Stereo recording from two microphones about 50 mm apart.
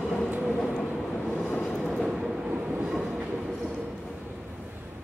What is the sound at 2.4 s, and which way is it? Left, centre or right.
Train, right.